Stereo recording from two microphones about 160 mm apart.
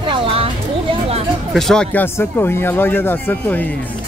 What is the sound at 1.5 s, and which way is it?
Speech, centre (ahead or behind).